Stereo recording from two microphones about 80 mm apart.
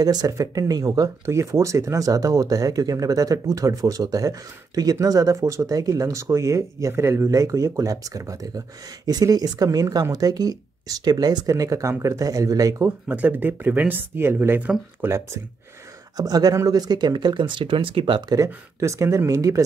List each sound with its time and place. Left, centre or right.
0.0 s speech: right
1.2 s speech: right
11.5 s speech: right
13.1 s speech: right
16.2 s speech: right
18.3 s speech: right